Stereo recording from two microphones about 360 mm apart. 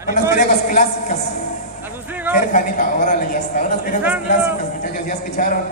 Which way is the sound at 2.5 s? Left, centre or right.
Left.